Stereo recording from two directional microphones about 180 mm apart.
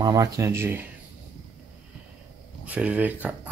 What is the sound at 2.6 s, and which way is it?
Speech, 10° right (ahead or behind).